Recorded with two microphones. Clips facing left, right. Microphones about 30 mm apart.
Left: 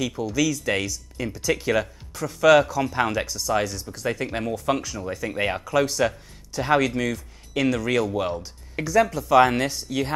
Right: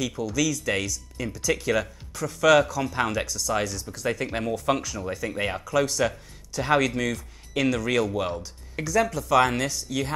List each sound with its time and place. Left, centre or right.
0.0 s speech: centre
8.4 s speech: centre